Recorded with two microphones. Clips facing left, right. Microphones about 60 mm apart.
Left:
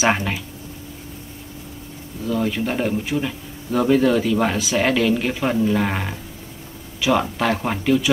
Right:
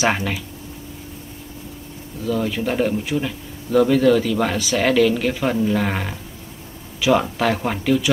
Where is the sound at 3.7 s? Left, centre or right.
Centre.